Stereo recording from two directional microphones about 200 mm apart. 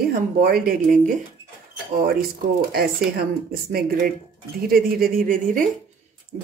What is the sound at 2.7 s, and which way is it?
Speech, 50° right (ahead or behind).